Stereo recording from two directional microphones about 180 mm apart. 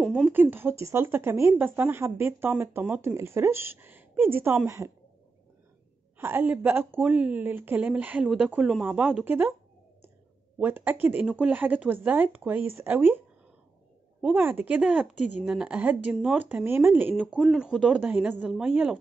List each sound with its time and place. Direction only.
0.1 s speech: 10° right (ahead or behind)
6.1 s speech: 10° right (ahead or behind)
10.6 s speech: 10° right (ahead or behind)
14.2 s speech: 10° right (ahead or behind)